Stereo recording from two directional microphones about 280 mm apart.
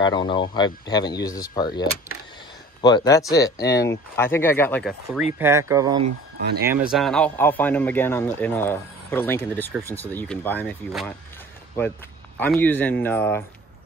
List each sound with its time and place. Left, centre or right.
0.0 s speech: centre
5.4 s speech: centre
12.4 s speech: centre